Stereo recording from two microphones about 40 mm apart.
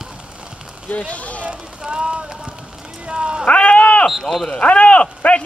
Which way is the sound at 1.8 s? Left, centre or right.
Right.